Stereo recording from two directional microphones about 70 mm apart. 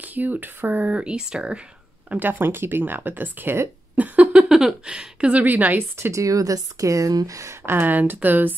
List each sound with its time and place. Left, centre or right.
0.0 s speech: right
2.0 s speech: right
4.5 s speech: centre; by 5.9 s right
5.9 s speech: right
7.6 s speech: right